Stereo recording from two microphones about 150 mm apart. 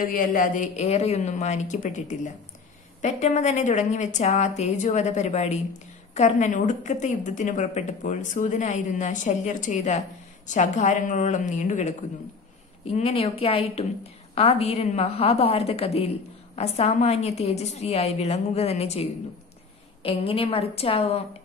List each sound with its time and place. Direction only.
0.0 s speech: 65° left (ahead or behind)
0.8 s a woman's voice: 45° left (ahead or behind)
12.8 s a woman's voice: 40° left (ahead or behind)